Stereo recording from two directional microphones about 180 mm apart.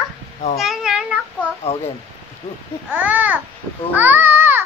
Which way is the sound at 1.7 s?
35° left (ahead or behind).